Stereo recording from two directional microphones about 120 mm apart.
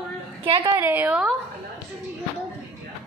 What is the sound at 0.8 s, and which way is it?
Speech, 15° right (ahead or behind).